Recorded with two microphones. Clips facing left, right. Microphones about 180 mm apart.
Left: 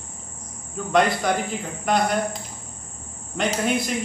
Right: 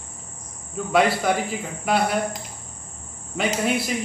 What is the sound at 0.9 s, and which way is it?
Speech, 5° right (ahead or behind).